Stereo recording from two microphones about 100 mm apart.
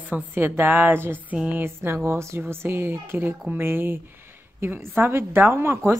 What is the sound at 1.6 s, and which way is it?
A woman's voice, 25° right (ahead or behind).